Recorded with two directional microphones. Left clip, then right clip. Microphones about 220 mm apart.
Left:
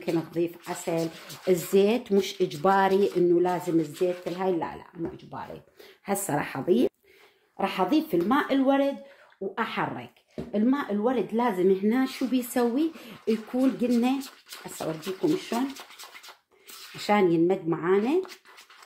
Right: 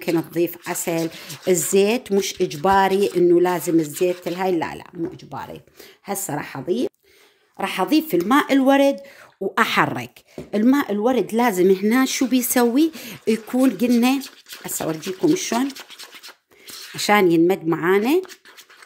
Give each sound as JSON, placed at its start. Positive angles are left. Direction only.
{"t": 0.0, "sound": "speech", "side_deg": -45}
{"t": 6.0, "sound": "speech", "side_deg": -15}
{"t": 7.5, "sound": "speech", "side_deg": -35}
{"t": 14.5, "sound": "speech", "side_deg": -10}
{"t": 16.9, "sound": "speech", "side_deg": -40}